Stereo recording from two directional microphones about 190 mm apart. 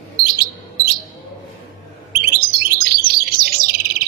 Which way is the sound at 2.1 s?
50° right (ahead or behind).